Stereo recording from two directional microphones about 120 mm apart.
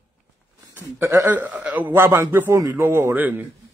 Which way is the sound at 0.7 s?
25° right (ahead or behind).